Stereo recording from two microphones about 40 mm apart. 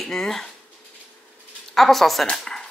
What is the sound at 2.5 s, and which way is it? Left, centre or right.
Dog, centre.